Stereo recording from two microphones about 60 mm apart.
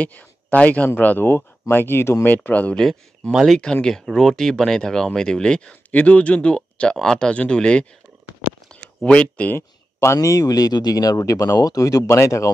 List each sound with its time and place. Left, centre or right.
0.0 s speech: left
2.2 s speech: left
2.7 s speech: centre
5.9 s speech: left
9.0 s speech: centre
9.9 s speech: left
12.1 s speech: left